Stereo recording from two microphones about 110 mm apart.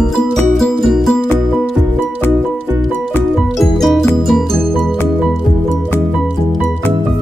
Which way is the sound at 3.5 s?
Centre (ahead or behind).